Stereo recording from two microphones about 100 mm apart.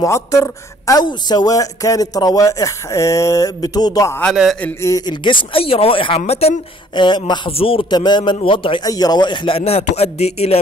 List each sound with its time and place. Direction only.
0.0 s speech: 30° left (ahead or behind)
4.3 s speech: centre (ahead or behind)
4.8 s speech: 40° left (ahead or behind)
5.2 s speech: 55° left (ahead or behind); by 6.5 s 85° left
7.0 s speech: 50° left (ahead or behind)
7.5 s a man's voice: 65° left (ahead or behind)
7.9 s speech: 45° left (ahead or behind)
8.4 s a man's voice: 60° left (ahead or behind)
8.8 s a man's voice: 40° left (ahead or behind); by 10.6 s 90° left